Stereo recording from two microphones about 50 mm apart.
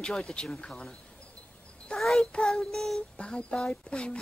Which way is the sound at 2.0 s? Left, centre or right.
Centre.